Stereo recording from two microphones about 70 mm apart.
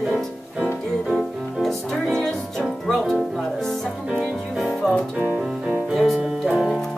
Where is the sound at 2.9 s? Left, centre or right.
Centre.